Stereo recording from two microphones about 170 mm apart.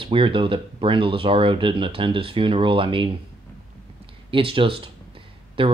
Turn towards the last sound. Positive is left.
turn(degrees=-30)  # may be behind; listen again after turning